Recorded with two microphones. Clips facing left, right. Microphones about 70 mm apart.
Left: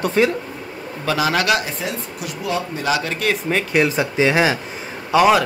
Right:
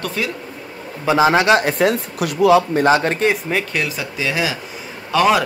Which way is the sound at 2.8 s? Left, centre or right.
Right.